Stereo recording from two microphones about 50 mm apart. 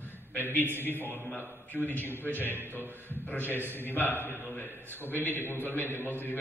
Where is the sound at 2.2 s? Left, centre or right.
Left.